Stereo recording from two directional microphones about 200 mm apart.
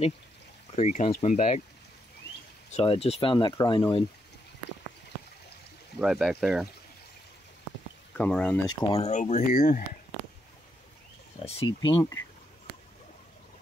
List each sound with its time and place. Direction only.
0.7 s speech: 30° left (ahead or behind)
2.7 s speech: 30° left (ahead or behind)
5.9 s speech: centre (ahead or behind)
8.2 s speech: 5° left (ahead or behind)
8.6 s speech: 20° left (ahead or behind)
9.0 s speech: 35° left (ahead or behind)
11.4 s speech: 25° left (ahead or behind)